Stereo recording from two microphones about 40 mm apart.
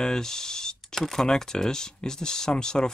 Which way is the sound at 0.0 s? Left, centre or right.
Centre.